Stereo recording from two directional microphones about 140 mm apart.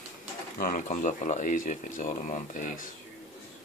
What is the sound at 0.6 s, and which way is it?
Speech, 75° left (ahead or behind).